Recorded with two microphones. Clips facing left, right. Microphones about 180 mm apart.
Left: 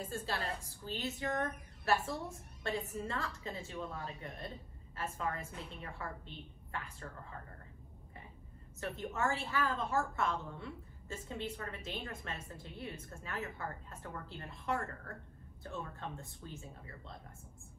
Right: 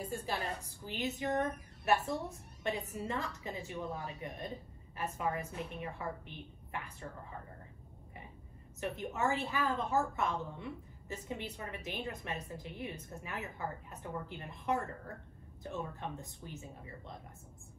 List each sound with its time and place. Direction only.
0.0 s a woman's voice: 15° right (ahead or behind)
8.8 s a woman's voice: 20° right (ahead or behind)